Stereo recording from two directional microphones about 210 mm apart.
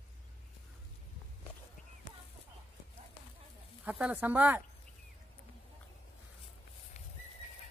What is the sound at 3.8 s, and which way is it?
Speech, 5° right (ahead or behind).